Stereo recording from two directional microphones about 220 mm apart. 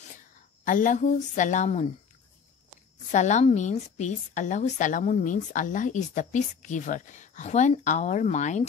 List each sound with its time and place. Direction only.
0.7 s a woman's voice: 35° left (ahead or behind)
3.1 s a woman's voice: 35° left (ahead or behind)